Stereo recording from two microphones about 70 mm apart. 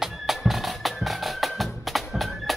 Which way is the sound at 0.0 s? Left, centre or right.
Centre.